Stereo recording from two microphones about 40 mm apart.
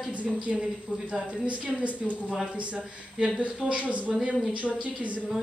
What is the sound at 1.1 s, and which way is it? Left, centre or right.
Speech, right.